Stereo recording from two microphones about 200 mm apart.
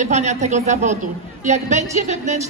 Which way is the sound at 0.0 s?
35° right (ahead or behind).